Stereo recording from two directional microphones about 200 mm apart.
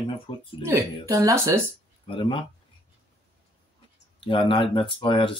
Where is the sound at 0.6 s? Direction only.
15° right (ahead or behind).